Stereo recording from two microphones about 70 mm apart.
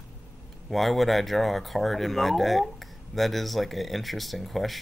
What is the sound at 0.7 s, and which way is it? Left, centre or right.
Speech, centre.